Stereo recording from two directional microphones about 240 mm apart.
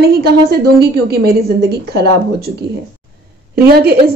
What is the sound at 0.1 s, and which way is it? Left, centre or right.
A woman's voice, right.